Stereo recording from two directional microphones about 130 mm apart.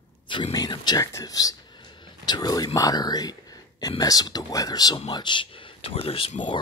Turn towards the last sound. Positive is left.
turn(degrees=45)  # may be behind; listen again after turning